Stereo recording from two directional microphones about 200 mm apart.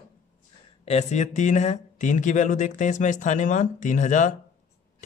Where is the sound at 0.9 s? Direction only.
35° left (ahead or behind).